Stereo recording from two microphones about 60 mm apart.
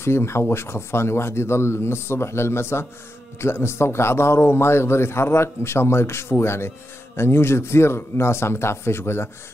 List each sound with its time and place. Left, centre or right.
0.0 s a man's voice: left